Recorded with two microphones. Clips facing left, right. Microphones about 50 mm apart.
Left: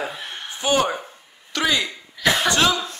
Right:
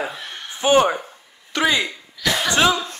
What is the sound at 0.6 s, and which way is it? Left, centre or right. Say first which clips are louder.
Speech: right 5 dB; right.